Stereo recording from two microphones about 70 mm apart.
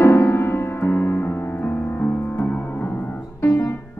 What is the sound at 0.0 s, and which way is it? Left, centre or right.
Music, left.